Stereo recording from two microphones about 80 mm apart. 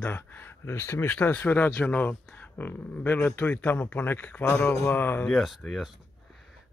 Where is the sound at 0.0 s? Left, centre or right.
Left.